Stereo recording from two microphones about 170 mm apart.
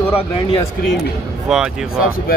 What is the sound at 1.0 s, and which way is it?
Speech, 5° right (ahead or behind).